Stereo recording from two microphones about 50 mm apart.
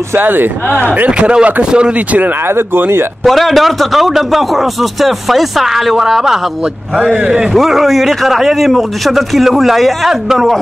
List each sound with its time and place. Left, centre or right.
0.2 s speech: right
1.2 s speech: right
2.4 s speech: right
3.3 s a man's voice: centre
7.5 s a man's voice: centre